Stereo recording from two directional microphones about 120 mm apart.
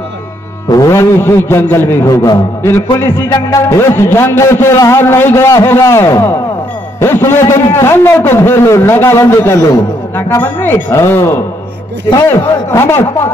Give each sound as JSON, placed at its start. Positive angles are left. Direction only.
{"t": 0.7, "sound": "a man's voice", "side_deg": 30}